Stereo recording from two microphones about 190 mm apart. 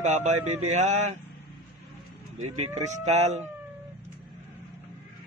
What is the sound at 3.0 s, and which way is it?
Speech, 35° right (ahead or behind).